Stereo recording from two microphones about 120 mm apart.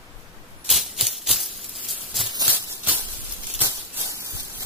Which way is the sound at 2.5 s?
15° right (ahead or behind).